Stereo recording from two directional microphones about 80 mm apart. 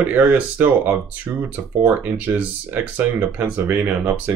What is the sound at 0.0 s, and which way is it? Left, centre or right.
Speech, right.